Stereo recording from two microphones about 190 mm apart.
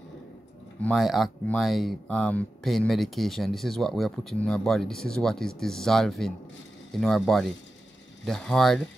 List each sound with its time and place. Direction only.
0.8 s speech: centre (ahead or behind)